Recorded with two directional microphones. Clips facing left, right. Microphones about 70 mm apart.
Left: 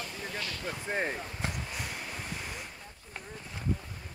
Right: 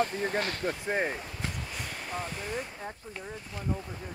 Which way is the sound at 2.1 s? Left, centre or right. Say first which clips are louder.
Right 5 dB; right.